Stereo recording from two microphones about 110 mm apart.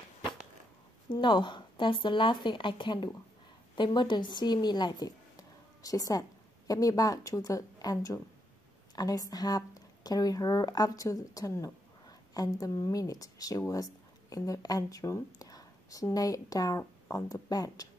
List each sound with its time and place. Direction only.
1.1 s a woman's voice: 45° left (ahead or behind)